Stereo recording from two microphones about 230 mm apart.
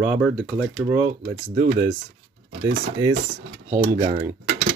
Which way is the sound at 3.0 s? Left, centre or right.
Centre.